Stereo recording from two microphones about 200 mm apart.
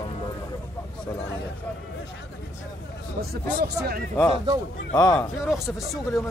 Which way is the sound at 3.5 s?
50° right (ahead or behind).